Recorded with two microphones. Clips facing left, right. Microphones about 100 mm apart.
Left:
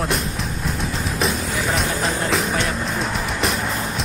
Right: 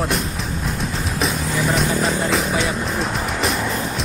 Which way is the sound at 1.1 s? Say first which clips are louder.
Right 1 dB; centre (ahead or behind).